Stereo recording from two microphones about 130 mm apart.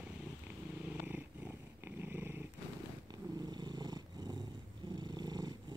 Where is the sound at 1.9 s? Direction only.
15° right (ahead or behind).